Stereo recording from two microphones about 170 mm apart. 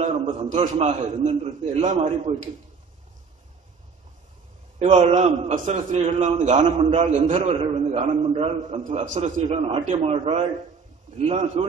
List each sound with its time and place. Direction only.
0.0 s a sound: 45° right (ahead or behind)
0.6 s a man's voice: 40° right (ahead or behind)
4.7 s a man's voice: 40° right (ahead or behind)